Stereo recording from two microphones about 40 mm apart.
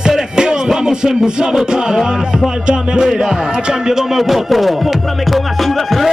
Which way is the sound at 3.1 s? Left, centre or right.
Centre.